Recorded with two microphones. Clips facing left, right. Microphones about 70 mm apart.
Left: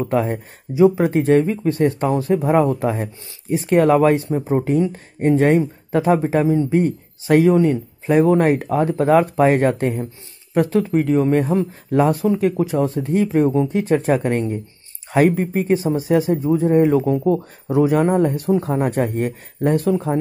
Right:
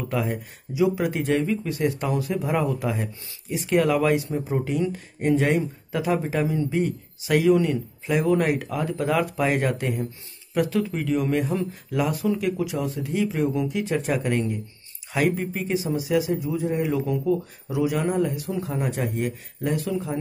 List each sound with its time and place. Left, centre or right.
0.0 s speech: left